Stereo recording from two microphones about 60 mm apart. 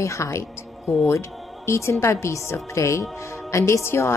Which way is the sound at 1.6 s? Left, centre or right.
Left.